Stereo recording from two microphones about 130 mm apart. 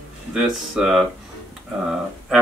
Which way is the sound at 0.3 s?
5° right (ahead or behind).